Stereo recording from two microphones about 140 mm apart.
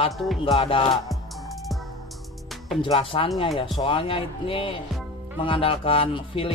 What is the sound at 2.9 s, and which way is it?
Speech, 40° left (ahead or behind).